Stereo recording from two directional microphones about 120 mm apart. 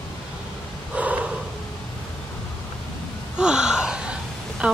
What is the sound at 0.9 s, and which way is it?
Snort, 10° right (ahead or behind).